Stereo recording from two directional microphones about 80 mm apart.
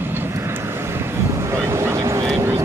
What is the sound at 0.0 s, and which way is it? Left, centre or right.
Vehicle, right.